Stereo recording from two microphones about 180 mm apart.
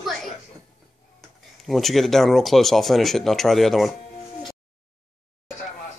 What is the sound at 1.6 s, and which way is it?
Speech, centre (ahead or behind).